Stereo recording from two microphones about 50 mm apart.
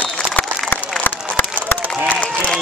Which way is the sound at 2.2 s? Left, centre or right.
Centre.